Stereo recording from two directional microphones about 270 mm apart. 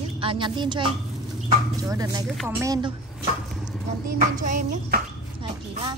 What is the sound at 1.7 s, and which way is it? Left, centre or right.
A woman's voice, centre.